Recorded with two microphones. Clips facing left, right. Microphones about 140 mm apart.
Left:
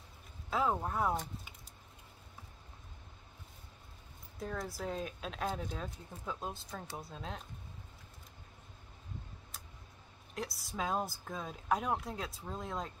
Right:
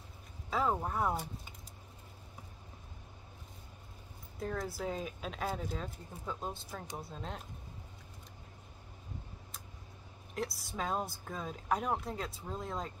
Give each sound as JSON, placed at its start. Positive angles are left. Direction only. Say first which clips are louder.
{"t": 0.5, "sound": "speech", "louder": "even", "side_deg": 0}
{"t": 4.4, "sound": "speech", "louder": "right 2 dB", "side_deg": 0}
{"t": 10.3, "sound": "speech", "louder": "right 2 dB", "side_deg": 0}